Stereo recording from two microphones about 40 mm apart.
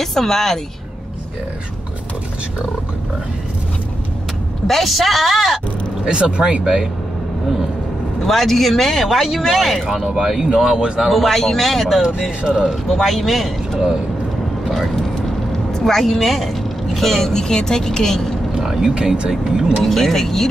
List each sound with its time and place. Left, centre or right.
0.0 s speech: centre
4.6 s speech: centre
6.0 s speech: right
8.2 s speech: centre
15.8 s speech: centre
18.6 s vehicle: centre
19.4 s speech: right
19.8 s speech: centre